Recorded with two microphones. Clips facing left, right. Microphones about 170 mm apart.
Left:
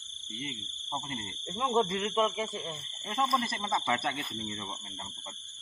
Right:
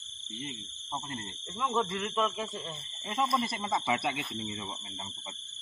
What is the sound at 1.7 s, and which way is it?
Speech, 30° left (ahead or behind).